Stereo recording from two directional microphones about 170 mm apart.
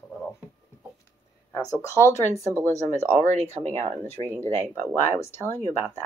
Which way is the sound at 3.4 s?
40° right (ahead or behind).